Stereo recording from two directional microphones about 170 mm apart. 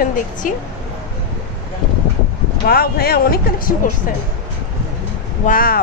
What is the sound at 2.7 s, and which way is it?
Speech, 65° left (ahead or behind).